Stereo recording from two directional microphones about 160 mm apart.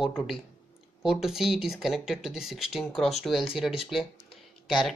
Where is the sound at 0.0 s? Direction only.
Centre (ahead or behind).